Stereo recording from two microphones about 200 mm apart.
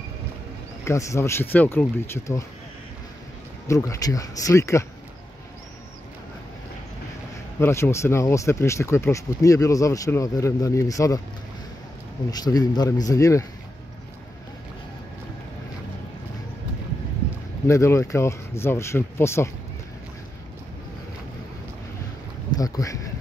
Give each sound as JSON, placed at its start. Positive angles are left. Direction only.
{"t": 0.8, "sound": "speech", "side_deg": 15}
{"t": 3.6, "sound": "speech", "side_deg": 15}
{"t": 7.6, "sound": "speech", "side_deg": 15}
{"t": 12.3, "sound": "speech", "side_deg": 20}
{"t": 17.6, "sound": "speech", "side_deg": 15}
{"t": 22.6, "sound": "speech", "side_deg": 15}